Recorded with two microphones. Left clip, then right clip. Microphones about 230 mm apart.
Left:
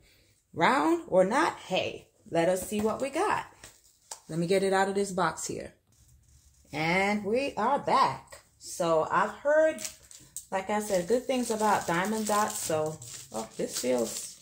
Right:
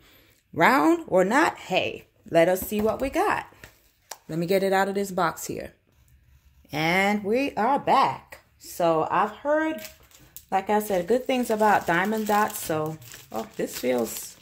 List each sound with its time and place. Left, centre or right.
0.6 s speech: right
4.1 s speech: right
6.7 s speech: right